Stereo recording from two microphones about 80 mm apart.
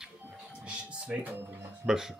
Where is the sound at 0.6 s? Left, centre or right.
Centre.